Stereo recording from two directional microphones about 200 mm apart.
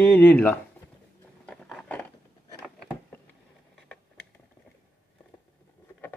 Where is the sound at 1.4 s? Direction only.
5° left (ahead or behind).